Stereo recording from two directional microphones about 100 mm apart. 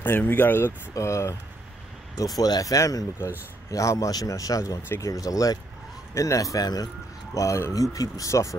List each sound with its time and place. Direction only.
0.0 s speech: 20° left (ahead or behind); by 6.9 s 40° left (ahead or behind)
7.3 s speech: 30° left (ahead or behind)